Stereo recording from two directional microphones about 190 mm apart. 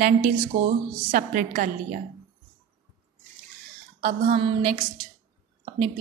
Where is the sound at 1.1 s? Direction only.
45° right (ahead or behind).